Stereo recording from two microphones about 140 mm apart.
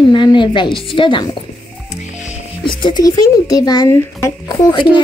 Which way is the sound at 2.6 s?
35° left (ahead or behind).